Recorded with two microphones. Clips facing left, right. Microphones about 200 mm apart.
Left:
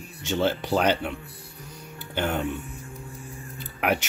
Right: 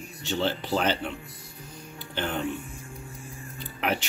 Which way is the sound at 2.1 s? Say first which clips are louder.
Left 3 dB; 10° left (ahead or behind).